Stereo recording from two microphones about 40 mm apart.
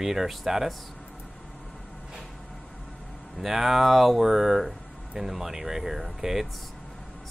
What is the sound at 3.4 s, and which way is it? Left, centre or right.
Speech, centre.